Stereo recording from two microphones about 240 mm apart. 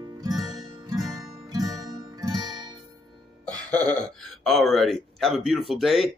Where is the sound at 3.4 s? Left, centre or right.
Centre.